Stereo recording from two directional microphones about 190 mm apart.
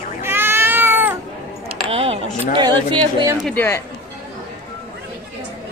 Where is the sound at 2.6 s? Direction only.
20° right (ahead or behind).